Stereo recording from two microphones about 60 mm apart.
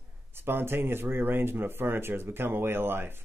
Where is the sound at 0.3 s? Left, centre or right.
Right.